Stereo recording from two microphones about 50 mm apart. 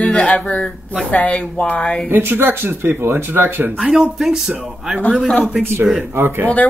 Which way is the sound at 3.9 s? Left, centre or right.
Centre.